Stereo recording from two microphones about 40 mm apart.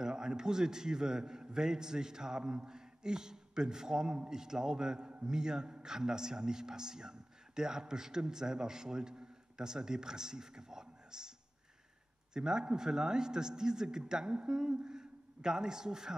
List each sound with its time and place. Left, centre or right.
0.0 s a man's voice: centre
12.4 s a man's voice: centre